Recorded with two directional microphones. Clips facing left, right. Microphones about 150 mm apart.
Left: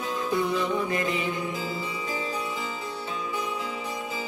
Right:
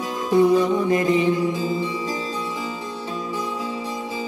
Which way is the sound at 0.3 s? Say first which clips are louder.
Right 11 dB; 30° right (ahead or behind).